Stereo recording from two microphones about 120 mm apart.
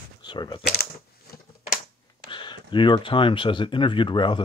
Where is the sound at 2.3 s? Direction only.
40° left (ahead or behind).